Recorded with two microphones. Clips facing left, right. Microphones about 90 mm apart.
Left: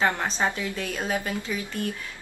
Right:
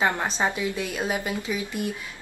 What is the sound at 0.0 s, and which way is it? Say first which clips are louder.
A woman's voice: even; 15° right (ahead or behind).